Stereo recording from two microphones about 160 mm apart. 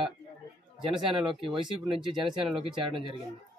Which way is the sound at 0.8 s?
35° right (ahead or behind).